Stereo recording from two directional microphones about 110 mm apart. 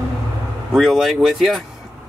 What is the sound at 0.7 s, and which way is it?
Speech, 5° right (ahead or behind).